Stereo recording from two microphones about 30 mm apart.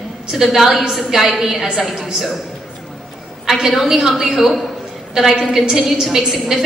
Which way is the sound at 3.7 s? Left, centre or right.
Centre.